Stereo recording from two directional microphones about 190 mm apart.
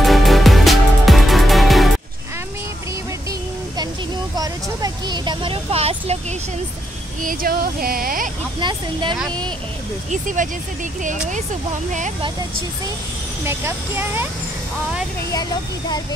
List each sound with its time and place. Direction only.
0.0 s music: centre (ahead or behind)
3.3 s a sound: 20° right (ahead or behind)
4.4 s vehicle: 20° right (ahead or behind)
7.2 s speech: 50° right (ahead or behind)
8.5 s speech: 25° right (ahead or behind)
10.1 s speech: 45° right (ahead or behind)
13.5 s speech: 10° right (ahead or behind)
15.3 s speech: 20° left (ahead or behind)